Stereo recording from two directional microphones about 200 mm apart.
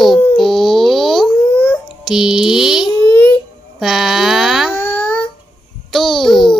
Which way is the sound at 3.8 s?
Centre (ahead or behind).